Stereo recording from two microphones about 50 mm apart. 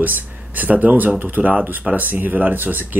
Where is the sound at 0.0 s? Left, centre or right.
Right.